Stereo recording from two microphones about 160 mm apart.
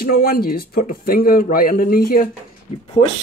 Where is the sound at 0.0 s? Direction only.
65° left (ahead or behind).